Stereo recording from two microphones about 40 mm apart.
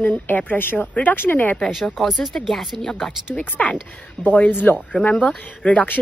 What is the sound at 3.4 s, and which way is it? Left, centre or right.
Speech, left.